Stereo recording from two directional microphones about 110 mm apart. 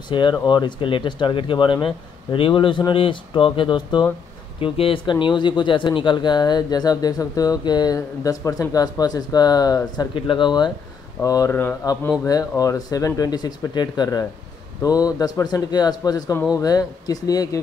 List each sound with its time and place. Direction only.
0.1 s speech: 45° left (ahead or behind)
10.1 s speech: 45° left (ahead or behind)
11.2 s speech: 30° left (ahead or behind)